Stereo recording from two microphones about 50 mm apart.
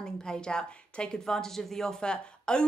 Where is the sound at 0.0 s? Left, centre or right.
Centre.